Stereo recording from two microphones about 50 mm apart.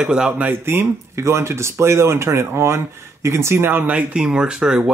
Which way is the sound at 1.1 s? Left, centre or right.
Right.